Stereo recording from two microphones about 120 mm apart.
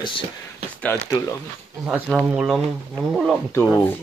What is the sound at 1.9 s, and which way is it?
Speech, 5° right (ahead or behind).